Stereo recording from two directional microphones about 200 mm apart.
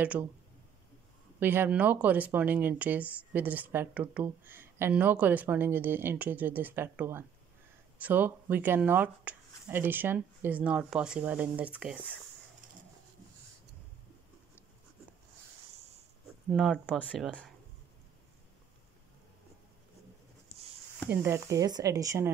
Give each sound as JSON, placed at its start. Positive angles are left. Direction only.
{"t": 0.0, "sound": "speech", "side_deg": -10}
{"t": 1.4, "sound": "speech", "side_deg": -10}
{"t": 16.5, "sound": "speech", "side_deg": -5}
{"t": 21.1, "sound": "speech", "side_deg": -10}